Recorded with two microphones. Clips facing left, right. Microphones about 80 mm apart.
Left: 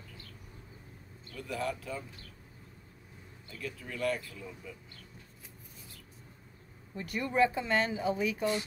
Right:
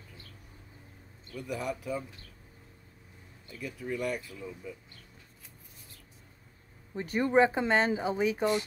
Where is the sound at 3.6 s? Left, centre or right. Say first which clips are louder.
Right 1 dB; centre.